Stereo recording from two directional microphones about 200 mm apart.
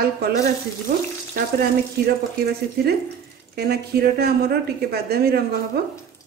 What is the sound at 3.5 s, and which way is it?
A woman's voice, 50° right (ahead or behind).